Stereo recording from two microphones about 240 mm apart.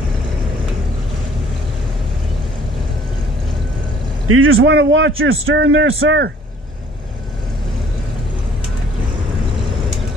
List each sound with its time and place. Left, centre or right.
4.3 s a man's voice: right